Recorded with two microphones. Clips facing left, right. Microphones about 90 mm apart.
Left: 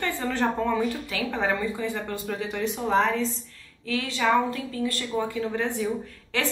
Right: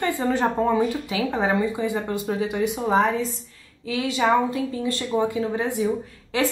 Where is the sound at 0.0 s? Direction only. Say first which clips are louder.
Right 4 dB; 15° right (ahead or behind).